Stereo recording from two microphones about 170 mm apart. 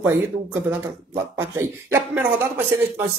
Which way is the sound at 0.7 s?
15° right (ahead or behind).